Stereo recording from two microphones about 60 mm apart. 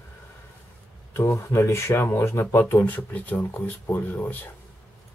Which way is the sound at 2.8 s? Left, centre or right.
Left.